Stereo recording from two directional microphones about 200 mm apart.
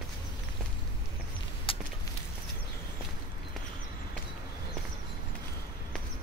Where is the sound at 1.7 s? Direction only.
25° left (ahead or behind).